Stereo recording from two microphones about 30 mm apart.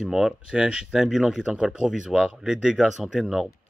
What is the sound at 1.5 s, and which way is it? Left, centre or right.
Speech, right.